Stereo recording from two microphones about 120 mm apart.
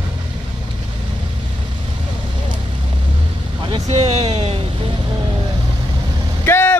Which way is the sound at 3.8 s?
55° right (ahead or behind).